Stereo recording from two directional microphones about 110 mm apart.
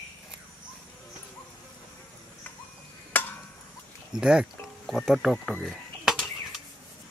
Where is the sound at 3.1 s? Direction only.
15° left (ahead or behind).